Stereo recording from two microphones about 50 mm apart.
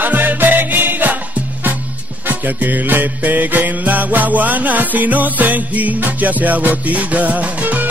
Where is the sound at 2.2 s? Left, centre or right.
Right.